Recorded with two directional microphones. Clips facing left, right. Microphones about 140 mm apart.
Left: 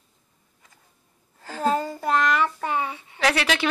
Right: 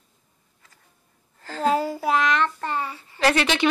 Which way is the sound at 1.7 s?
10° right (ahead or behind).